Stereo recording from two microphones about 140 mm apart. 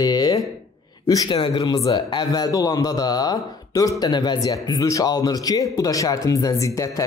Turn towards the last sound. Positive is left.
turn(degrees=25)  # may be behind; listen again after turning